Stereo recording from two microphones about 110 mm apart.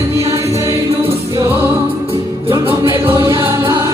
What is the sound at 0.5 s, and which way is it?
Music, 60° right (ahead or behind).